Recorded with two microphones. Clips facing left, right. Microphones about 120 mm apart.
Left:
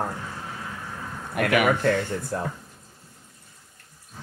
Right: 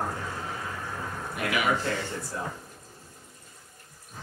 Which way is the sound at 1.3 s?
60° left (ahead or behind).